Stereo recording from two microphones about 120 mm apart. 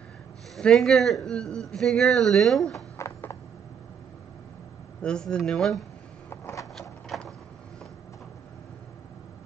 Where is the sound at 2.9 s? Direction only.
25° left (ahead or behind).